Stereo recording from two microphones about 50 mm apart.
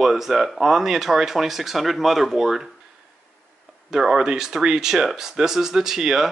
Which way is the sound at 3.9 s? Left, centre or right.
Centre.